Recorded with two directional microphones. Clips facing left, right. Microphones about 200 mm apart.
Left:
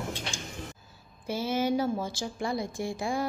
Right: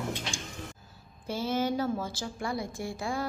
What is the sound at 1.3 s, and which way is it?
A woman's voice, 10° left (ahead or behind).